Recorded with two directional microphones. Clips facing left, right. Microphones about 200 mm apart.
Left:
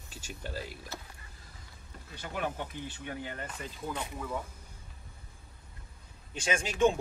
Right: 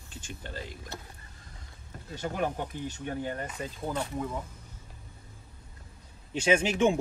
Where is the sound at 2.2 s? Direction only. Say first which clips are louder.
Right 4 dB; 45° right (ahead or behind).